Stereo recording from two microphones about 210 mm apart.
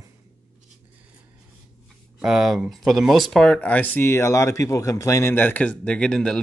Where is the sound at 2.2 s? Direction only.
Centre (ahead or behind).